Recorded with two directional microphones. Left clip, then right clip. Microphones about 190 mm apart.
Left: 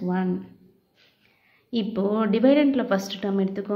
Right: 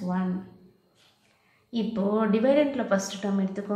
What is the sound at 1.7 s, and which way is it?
A woman's voice, 40° left (ahead or behind).